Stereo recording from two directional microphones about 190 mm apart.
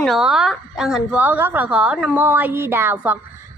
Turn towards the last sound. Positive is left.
turn(degrees=-10)  # may be behind; listen again after turning